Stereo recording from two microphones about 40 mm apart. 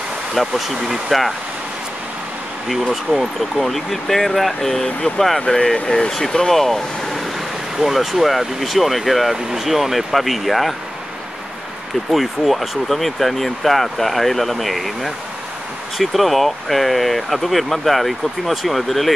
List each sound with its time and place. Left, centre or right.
0.3 s speech: centre
3.2 s speech: centre
5.5 s speech: left
5.9 s speech: centre
12.1 s speech: centre